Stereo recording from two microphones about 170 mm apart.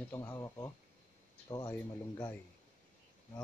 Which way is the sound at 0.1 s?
15° left (ahead or behind).